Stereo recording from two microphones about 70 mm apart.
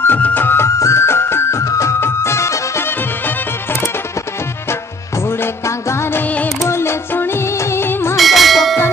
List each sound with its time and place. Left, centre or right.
0.0 s music: left
0.7 s music: left
5.4 s music: left
8.2 s church bell: centre